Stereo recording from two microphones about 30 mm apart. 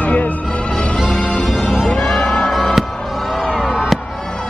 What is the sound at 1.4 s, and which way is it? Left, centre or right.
Music, centre.